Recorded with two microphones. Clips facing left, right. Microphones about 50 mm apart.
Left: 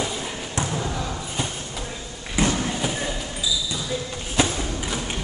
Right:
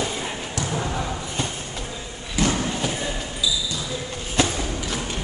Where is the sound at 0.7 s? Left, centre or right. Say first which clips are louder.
Right 1 dB; right.